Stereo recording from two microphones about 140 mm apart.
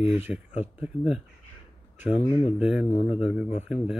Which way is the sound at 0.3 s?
5° right (ahead or behind).